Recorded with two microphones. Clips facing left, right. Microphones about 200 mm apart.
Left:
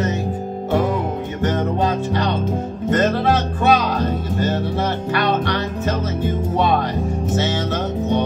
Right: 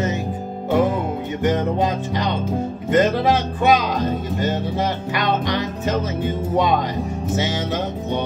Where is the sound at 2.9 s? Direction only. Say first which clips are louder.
Right 1 dB; 15° right (ahead or behind).